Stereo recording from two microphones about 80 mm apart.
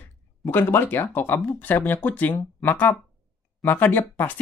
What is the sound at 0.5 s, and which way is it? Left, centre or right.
Speech, left.